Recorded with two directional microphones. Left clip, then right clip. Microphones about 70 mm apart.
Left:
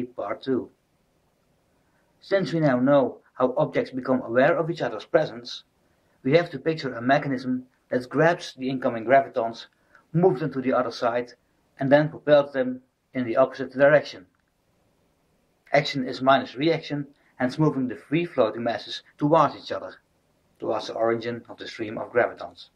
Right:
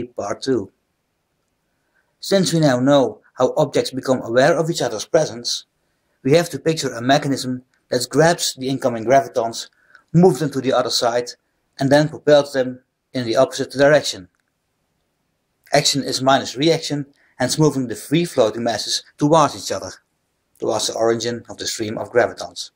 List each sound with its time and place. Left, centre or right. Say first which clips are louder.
0.1 s speech: right 7 dB; centre
2.2 s speech: right 6 dB; centre
15.7 s speech: right 6 dB; centre